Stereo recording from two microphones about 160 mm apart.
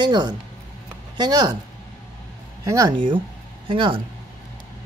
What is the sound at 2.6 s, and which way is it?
Speech, 20° right (ahead or behind).